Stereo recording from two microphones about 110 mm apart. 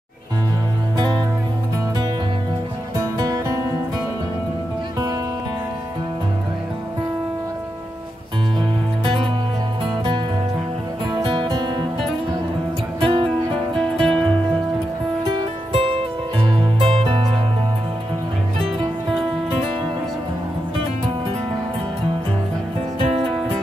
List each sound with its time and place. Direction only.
3.2 s music: 35° right (ahead or behind)
8.5 s music: 50° right (ahead or behind)
11.1 s music: 50° right (ahead or behind)
13.0 s music: 50° right (ahead or behind)
13.7 s music: 5° left (ahead or behind)
15.3 s music: 55° right (ahead or behind)